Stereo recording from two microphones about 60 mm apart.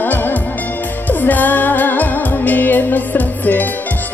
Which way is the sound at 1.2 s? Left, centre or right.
Left.